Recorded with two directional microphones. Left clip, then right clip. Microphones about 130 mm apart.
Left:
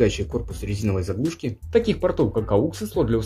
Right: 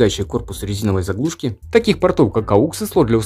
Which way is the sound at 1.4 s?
40° right (ahead or behind).